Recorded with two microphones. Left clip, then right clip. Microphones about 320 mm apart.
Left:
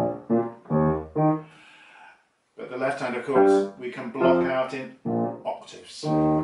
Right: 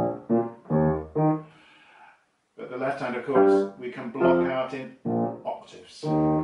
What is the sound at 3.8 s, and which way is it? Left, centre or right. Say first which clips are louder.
Speech: left 1 dB; centre.